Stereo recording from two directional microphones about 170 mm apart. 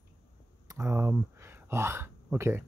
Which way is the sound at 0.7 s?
15° right (ahead or behind).